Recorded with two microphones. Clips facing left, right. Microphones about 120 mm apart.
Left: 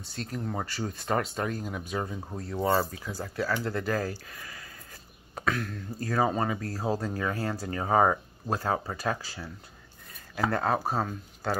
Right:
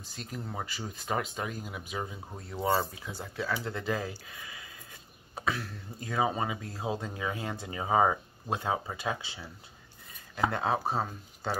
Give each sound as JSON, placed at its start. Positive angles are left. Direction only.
{"t": 0.1, "sound": "speech", "side_deg": -5}
{"t": 3.8, "sound": "speech", "side_deg": -15}
{"t": 5.3, "sound": "speech", "side_deg": -5}